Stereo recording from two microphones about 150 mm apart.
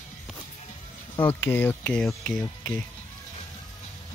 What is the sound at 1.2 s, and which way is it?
Speech, 15° left (ahead or behind).